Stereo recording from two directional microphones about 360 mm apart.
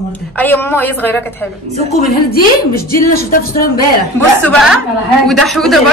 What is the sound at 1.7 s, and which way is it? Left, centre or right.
Speech, centre.